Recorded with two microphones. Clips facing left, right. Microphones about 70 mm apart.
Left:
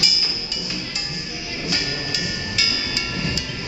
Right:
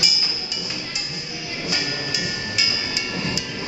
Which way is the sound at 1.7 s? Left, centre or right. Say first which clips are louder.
Even; centre.